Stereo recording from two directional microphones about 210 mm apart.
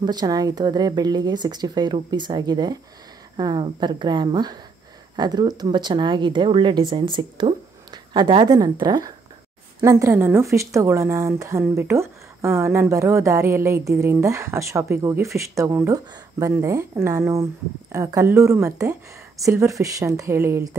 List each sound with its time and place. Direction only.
0.0 s speech: 20° right (ahead or behind)